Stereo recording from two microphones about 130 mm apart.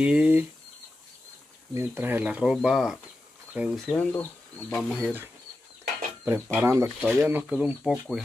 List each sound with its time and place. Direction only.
0.0 s speech: 10° right (ahead or behind)
1.7 s speech: 20° right (ahead or behind)
3.8 s speech: 10° left (ahead or behind)
6.2 s speech: 15° right (ahead or behind)